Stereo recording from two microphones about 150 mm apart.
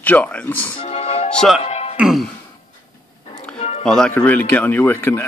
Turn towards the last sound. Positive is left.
turn(degrees=15)  # may be behind; listen again after turning